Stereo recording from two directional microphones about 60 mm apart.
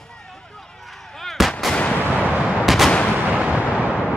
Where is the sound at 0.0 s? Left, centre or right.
Centre.